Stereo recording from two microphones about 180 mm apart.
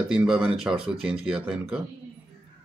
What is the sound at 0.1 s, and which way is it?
Speech, 5° right (ahead or behind).